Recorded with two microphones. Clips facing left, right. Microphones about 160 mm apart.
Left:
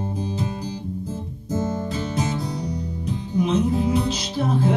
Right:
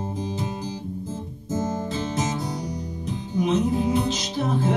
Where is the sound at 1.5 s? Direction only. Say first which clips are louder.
Left 1 dB; 20° right (ahead or behind).